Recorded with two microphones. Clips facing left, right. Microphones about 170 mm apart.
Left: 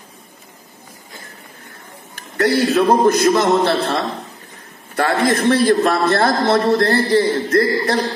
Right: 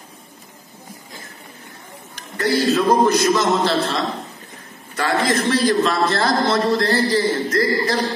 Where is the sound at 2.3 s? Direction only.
65° left (ahead or behind).